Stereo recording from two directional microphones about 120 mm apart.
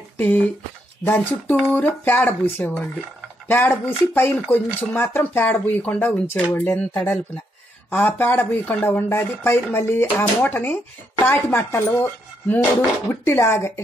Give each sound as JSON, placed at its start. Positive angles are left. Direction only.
{"t": 0.2, "sound": "speech", "side_deg": 15}